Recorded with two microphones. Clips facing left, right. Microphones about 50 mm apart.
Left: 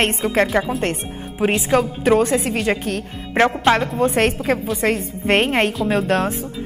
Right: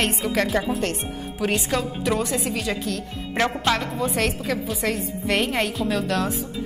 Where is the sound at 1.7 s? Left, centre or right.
Left.